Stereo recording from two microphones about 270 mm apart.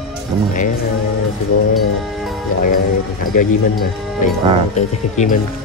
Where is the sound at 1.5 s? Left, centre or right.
Left.